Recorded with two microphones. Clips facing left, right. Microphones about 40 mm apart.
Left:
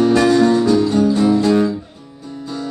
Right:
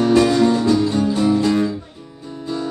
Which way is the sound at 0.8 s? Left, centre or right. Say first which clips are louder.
Left 3 dB; centre.